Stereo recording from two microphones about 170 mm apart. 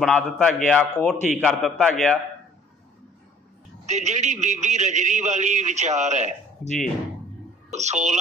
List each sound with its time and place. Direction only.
0.0 s a man's voice: 5° left (ahead or behind)
1.1 s speech: 45° left (ahead or behind)
1.4 s a man's voice: 5° left (ahead or behind)
3.8 s a man's voice: 45° right (ahead or behind)
6.6 s speech: 45° left (ahead or behind)
7.7 s a man's voice: 45° right (ahead or behind)